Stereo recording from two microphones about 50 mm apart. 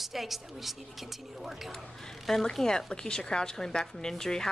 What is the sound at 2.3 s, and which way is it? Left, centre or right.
A woman's voice, centre.